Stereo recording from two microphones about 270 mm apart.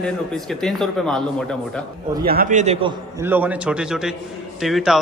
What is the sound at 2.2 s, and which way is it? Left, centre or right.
Speech, right.